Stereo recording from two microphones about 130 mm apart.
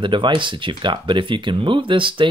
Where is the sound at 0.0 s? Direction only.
40° right (ahead or behind).